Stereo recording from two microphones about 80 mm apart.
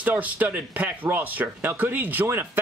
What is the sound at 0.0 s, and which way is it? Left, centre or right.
Speech, centre.